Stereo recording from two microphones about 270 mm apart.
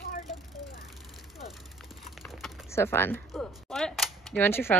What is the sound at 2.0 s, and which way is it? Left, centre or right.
A woman's voice, centre.